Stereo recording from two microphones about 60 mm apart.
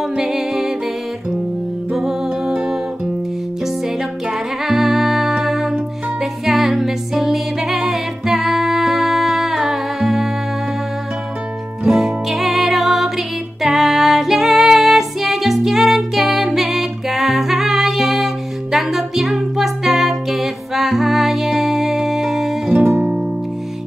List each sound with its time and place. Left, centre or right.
0.1 s music: centre
1.9 s music: centre
4.3 s music: centre
11.8 s music: centre
22.7 s music: centre